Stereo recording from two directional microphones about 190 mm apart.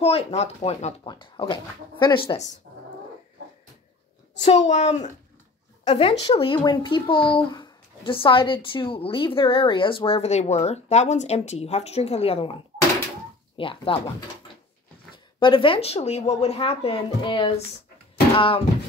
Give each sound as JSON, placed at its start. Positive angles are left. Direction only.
{"t": 0.0, "sound": "speech", "side_deg": 35}
{"t": 1.0, "sound": "a child's voice", "side_deg": 25}
{"t": 4.4, "sound": "a woman's voice", "side_deg": 35}
{"t": 13.6, "sound": "a child's voice", "side_deg": 30}
{"t": 15.3, "sound": "speech", "side_deg": 25}